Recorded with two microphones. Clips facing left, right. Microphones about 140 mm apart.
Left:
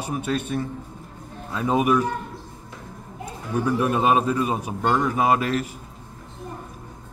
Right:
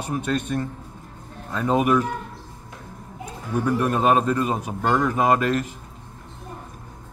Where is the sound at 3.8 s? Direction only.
10° left (ahead or behind).